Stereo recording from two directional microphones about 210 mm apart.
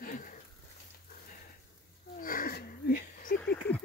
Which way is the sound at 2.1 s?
40° left (ahead or behind).